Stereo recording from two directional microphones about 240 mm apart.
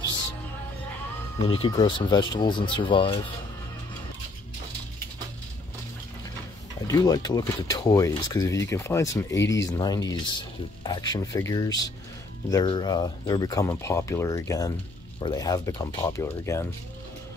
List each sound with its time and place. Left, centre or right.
1.5 s speech: left
6.9 s speech: centre